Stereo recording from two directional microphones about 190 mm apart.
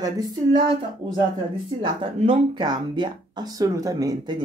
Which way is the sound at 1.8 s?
30° right (ahead or behind).